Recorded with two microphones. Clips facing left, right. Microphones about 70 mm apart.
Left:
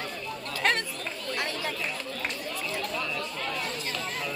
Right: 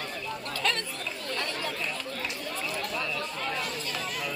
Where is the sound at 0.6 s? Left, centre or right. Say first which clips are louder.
Left 4 dB; left.